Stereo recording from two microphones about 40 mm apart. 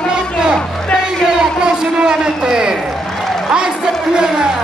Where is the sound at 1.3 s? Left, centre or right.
Right.